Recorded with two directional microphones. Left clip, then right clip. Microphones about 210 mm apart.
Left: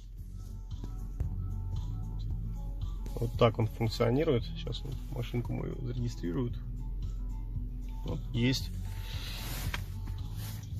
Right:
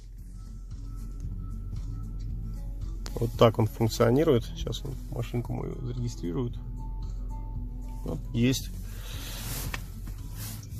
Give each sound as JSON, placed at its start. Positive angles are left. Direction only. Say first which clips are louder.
{"t": 3.2, "sound": "speech", "louder": "right 6 dB", "side_deg": -25}
{"t": 5.1, "sound": "speech", "louder": "right 3 dB", "side_deg": -10}
{"t": 8.0, "sound": "speech", "louder": "right 4 dB", "side_deg": -25}